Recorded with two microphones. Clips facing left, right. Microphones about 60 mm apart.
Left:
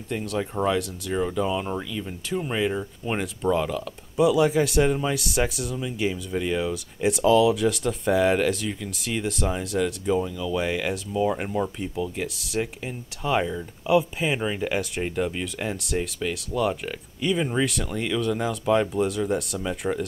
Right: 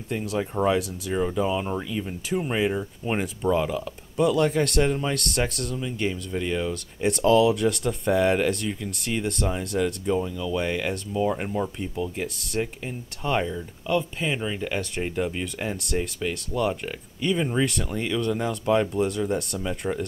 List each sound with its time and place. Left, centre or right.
0.1 s speech: centre
1.9 s speech: centre